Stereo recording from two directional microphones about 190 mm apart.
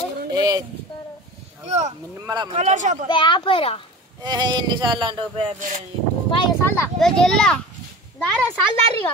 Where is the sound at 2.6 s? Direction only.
40° right (ahead or behind).